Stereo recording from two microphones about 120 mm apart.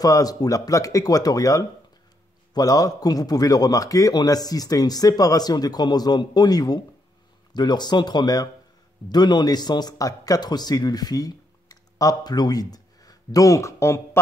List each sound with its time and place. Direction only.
0.0 s a man's voice: 30° left (ahead or behind)